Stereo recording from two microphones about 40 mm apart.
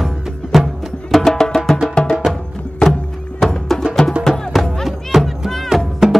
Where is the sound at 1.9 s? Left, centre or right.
Left.